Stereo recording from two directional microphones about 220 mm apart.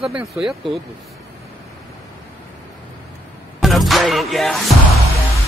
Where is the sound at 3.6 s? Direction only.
Centre (ahead or behind).